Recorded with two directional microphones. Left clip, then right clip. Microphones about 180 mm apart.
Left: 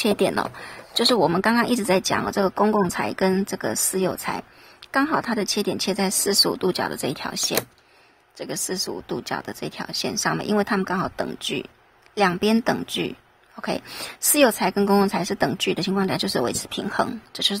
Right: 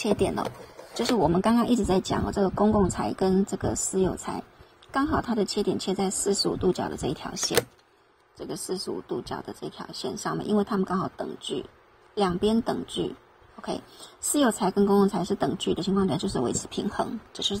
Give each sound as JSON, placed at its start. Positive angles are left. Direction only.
{"t": 0.0, "sound": "speech", "side_deg": 25}